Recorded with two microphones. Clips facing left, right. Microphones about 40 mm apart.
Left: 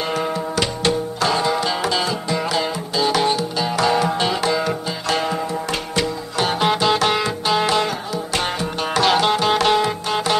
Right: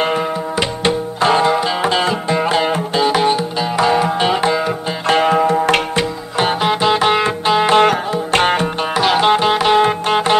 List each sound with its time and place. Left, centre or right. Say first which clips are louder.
0.1 s music: right 3 dB; right
1.6 s music: right 4 dB; centre
1.9 s music: right 5 dB; right
3.1 s music: right 2 dB; right
5.0 s zither: right 10 dB; right
5.9 s music: right 3 dB; right
6.6 s music: right 2 dB; centre
7.7 s music: right 8 dB; right
8.9 s music: right 3 dB; centre
9.8 s music: right 6 dB; right